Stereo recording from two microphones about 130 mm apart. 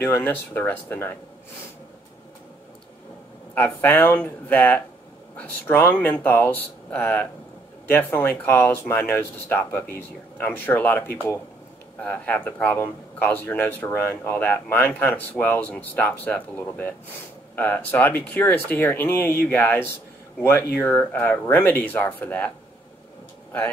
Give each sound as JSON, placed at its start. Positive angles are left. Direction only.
{"t": 0.0, "sound": "speech", "side_deg": 20}
{"t": 3.5, "sound": "speech", "side_deg": 15}